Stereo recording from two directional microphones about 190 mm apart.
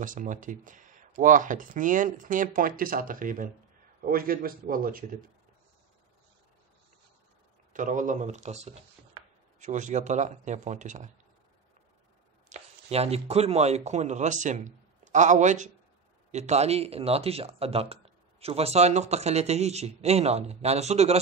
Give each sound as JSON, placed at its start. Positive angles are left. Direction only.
{"t": 0.0, "sound": "speech", "side_deg": -45}
{"t": 7.7, "sound": "speech", "side_deg": -45}
{"t": 12.4, "sound": "speech", "side_deg": -35}